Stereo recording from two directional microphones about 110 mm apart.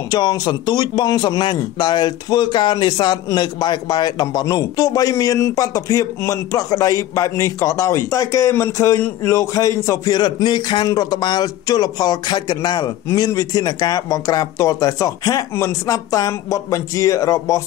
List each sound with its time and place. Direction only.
0.1 s a man's voice: 40° left (ahead or behind)